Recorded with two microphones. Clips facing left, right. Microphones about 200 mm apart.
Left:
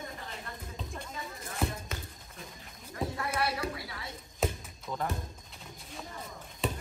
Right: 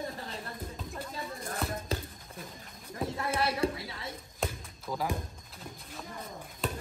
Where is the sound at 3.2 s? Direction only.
25° right (ahead or behind).